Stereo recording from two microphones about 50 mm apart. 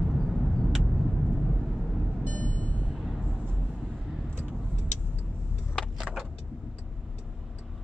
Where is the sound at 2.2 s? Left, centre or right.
Left.